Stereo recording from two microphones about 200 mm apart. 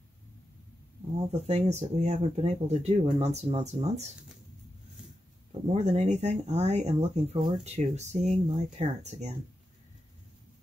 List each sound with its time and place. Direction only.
1.3 s speech: 35° right (ahead or behind)
5.8 s speech: 35° right (ahead or behind)